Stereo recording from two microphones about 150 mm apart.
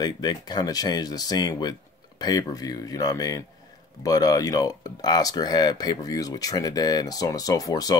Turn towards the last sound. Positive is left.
turn(degrees=25)  # may be behind; listen again after turning